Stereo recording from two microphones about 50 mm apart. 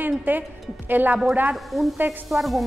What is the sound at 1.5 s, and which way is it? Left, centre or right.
A woman's voice, centre.